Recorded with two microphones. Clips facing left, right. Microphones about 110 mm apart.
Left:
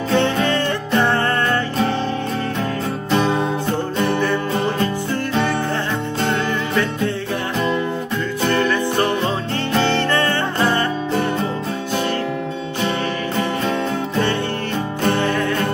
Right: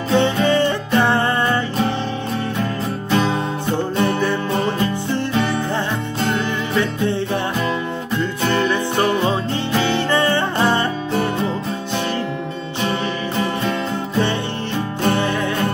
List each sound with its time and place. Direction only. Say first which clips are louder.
0.1 s music: right 2 dB; 15° right (ahead or behind)
3.1 s music: left 1 dB; centre (ahead or behind)
5.1 s music: even; 15° right (ahead or behind)
8.5 s music: even; 15° right (ahead or behind)
15.0 s music: even; 15° right (ahead or behind)